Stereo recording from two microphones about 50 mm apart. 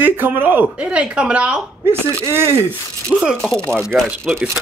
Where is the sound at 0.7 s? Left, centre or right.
Right.